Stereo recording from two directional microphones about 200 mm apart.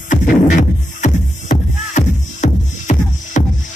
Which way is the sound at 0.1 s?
40° left (ahead or behind).